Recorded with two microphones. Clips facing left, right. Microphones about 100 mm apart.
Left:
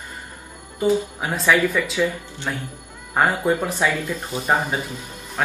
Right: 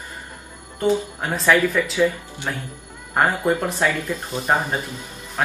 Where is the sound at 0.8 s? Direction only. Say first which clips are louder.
Left 1 dB; 5° left (ahead or behind).